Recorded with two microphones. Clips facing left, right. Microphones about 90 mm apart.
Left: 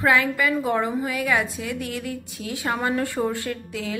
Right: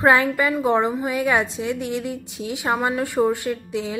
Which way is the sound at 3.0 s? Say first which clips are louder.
Right 5 dB; 20° right (ahead or behind).